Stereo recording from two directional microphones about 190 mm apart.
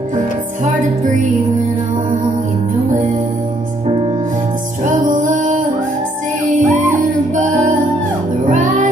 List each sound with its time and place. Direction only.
4.8 s music: 45° right (ahead or behind)